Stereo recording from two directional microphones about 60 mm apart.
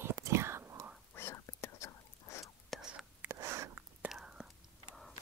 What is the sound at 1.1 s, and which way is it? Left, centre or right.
Whispering, left.